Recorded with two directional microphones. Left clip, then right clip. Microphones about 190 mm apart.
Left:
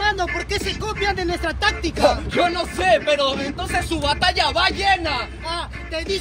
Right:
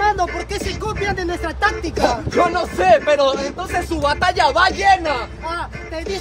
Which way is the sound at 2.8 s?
15° right (ahead or behind).